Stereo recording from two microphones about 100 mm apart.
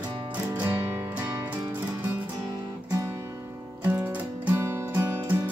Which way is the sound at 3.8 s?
15° right (ahead or behind).